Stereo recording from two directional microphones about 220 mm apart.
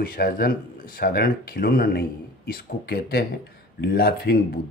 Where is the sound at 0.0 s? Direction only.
40° left (ahead or behind).